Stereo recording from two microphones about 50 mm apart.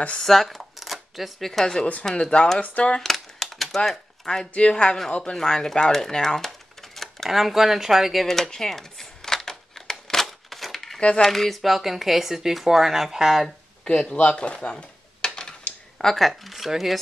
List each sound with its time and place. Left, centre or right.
0.2 s speech: centre
2.6 s speech: left
3.0 s a sound: centre
4.6 s speech: left; by 7.2 s centre
7.2 s speech: centre
8.5 s crumpling: centre
11.0 s speech: left
11.2 s speech: centre
13.8 s speech: centre
14.2 s a sound: left
16.0 s speech: centre